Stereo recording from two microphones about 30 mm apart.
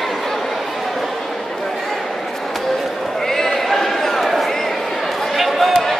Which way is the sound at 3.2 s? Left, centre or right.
Centre.